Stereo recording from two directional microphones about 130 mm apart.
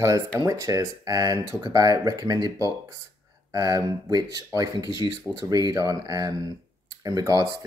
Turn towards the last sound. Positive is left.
turn(degrees=-25)  # may be behind; listen again after turning